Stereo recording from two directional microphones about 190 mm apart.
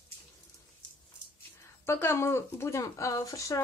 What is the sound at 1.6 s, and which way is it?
Speech, 15° left (ahead or behind).